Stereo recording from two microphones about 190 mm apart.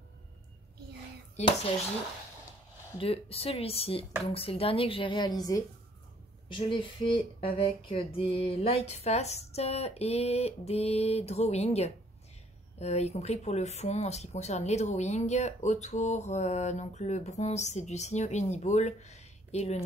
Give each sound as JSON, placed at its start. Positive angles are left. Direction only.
{"t": 1.4, "sound": "speech", "side_deg": 35}
{"t": 3.0, "sound": "a woman's voice", "side_deg": 30}